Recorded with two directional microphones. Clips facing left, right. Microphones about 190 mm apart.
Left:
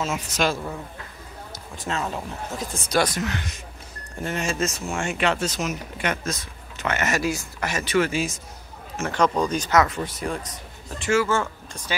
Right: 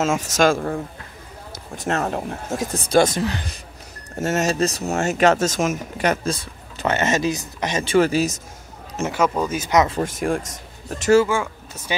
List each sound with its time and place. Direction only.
0.1 s speech: 45° right (ahead or behind)
1.9 s speech: 55° right (ahead or behind)
2.6 s speech: 35° right (ahead or behind)
4.2 s speech: 45° right (ahead or behind)
9.0 s speech: 5° right (ahead or behind)
10.0 s speech: 50° right (ahead or behind)
11.2 s speech: 10° right (ahead or behind)